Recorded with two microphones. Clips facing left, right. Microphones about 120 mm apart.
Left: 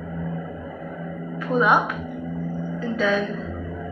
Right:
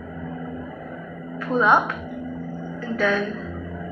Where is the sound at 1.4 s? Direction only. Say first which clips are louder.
Right 1 dB; 15° left (ahead or behind).